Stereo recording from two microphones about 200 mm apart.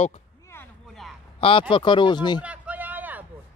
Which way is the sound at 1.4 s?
25° left (ahead or behind).